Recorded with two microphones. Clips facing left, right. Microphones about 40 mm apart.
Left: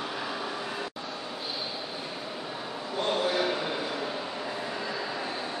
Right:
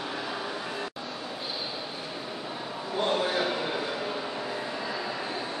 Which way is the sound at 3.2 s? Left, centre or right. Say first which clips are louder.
Even; centre.